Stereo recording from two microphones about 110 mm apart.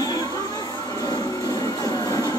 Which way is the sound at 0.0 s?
35° left (ahead or behind).